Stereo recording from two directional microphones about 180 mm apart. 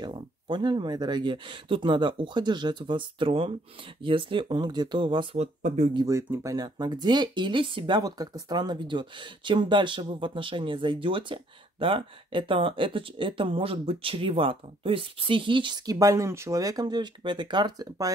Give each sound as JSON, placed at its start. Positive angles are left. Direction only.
{"t": 0.0, "sound": "speech", "side_deg": -25}
{"t": 5.9, "sound": "speech", "side_deg": -15}